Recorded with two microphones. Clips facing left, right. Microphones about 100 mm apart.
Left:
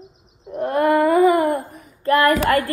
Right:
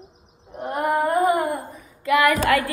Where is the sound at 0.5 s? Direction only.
75° left (ahead or behind).